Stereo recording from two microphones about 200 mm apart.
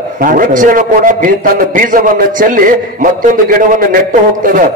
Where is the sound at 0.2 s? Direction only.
45° right (ahead or behind).